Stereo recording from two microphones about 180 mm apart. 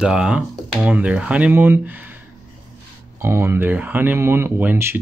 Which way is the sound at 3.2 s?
15° right (ahead or behind).